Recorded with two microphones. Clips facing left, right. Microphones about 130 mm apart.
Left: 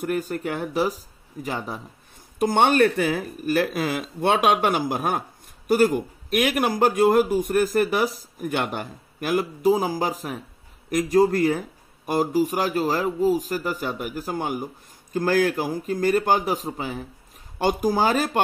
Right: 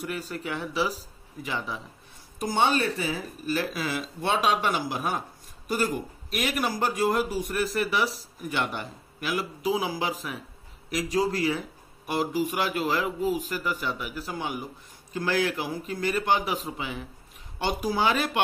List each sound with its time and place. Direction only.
0.0 s speech: 50° left (ahead or behind)
2.3 s a man's voice: 55° left (ahead or behind); by 18.4 s 40° left (ahead or behind)